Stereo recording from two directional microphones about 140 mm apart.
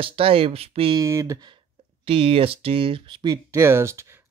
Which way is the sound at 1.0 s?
25° right (ahead or behind).